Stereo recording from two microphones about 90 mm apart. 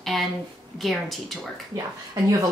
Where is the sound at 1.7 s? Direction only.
40° right (ahead or behind).